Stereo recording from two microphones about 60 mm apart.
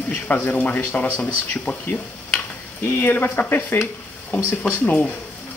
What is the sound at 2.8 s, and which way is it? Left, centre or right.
Speech, left.